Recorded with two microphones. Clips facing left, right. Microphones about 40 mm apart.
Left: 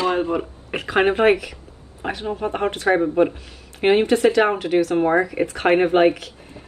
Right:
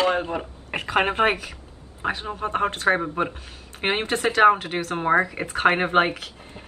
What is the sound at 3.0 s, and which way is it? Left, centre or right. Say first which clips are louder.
Speech: left 8 dB; centre.